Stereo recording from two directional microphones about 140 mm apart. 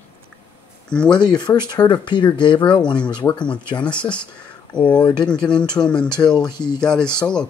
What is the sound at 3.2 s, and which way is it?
Speech, 15° left (ahead or behind).